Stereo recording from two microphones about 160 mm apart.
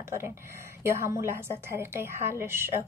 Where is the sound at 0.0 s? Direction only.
15° right (ahead or behind).